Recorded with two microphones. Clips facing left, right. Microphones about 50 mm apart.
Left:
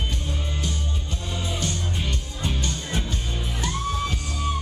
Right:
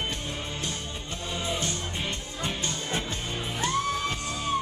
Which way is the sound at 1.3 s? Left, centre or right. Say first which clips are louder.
Left 1 dB; right.